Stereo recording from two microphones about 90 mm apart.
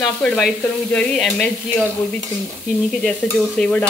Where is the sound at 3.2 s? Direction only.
5° right (ahead or behind).